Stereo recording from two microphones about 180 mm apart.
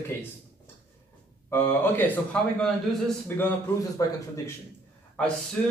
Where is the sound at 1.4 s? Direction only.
10° left (ahead or behind).